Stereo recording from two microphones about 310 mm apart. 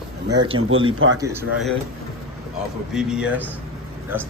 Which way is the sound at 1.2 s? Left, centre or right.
Centre.